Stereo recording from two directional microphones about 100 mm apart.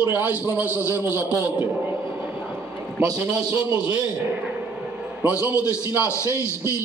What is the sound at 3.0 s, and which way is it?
Speech, 35° right (ahead or behind).